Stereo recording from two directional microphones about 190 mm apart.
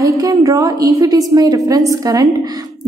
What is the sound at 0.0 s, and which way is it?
A woman's voice, 15° right (ahead or behind).